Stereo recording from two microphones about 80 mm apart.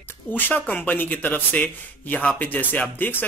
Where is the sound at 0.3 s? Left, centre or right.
Left.